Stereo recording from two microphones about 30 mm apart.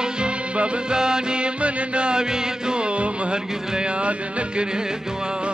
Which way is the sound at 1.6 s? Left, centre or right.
Right.